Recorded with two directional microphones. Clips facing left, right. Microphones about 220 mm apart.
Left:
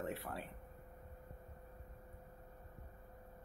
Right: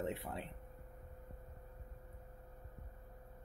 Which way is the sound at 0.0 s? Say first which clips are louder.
Right 2 dB; 20° right (ahead or behind).